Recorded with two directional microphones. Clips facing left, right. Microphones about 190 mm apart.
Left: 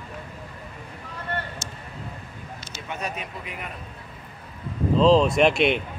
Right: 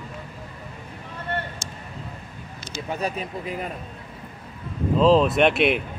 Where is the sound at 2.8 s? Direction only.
35° right (ahead or behind).